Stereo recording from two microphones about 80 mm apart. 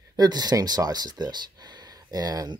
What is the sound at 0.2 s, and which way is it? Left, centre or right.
Speech, right.